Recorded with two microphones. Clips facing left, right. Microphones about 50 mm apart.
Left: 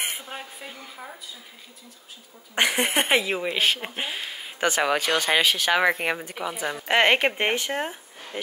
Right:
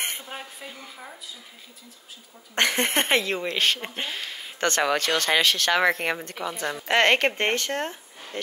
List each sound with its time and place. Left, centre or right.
0.0 s a woman's voice: centre
2.5 s speech: centre